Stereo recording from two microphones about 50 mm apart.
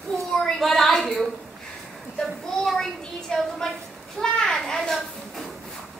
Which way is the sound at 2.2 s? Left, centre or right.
Centre.